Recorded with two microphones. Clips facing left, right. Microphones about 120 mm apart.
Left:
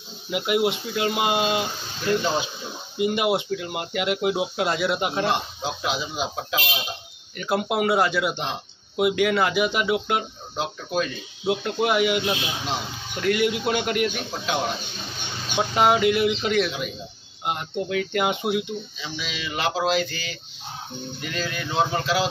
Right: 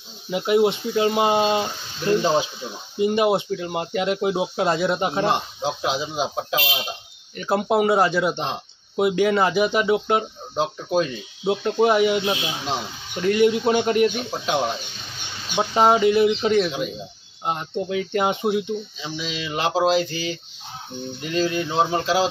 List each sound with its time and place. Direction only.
0.3 s speech: 30° right (ahead or behind)
13.2 s speech: 30° right (ahead or behind)
15.7 s speech: 30° right (ahead or behind)